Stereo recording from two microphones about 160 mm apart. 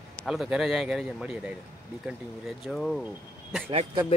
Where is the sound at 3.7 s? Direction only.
40° right (ahead or behind).